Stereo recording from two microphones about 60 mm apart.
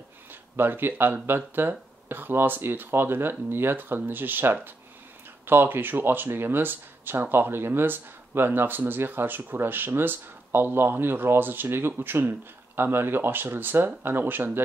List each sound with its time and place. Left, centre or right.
0.3 s speech: right